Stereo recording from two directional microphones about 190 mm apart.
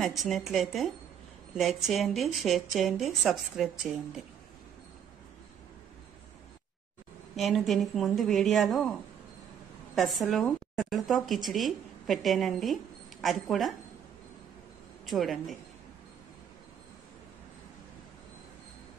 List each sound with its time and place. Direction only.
0.0 s speech: centre (ahead or behind)
7.3 s speech: centre (ahead or behind)
9.9 s speech: centre (ahead or behind)
15.0 s speech: centre (ahead or behind)